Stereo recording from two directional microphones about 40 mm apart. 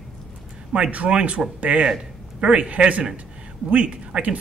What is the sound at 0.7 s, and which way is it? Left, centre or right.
Speech, right.